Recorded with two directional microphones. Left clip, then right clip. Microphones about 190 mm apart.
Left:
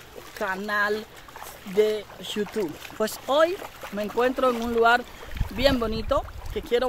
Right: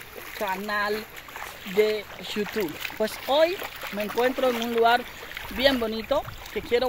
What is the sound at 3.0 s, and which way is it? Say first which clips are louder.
Speech: even; 15° left (ahead or behind).